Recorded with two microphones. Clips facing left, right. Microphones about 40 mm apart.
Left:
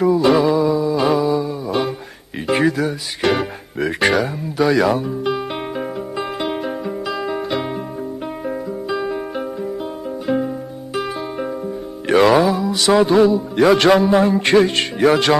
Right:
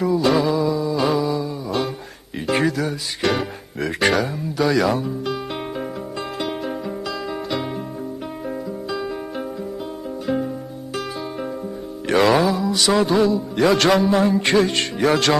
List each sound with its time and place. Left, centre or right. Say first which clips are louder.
0.0 s music: left 4 dB; centre
10.2 s music: left 3 dB; centre
12.1 s speech: left 3 dB; centre